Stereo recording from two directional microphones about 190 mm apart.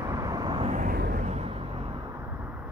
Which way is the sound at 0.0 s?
20° right (ahead or behind).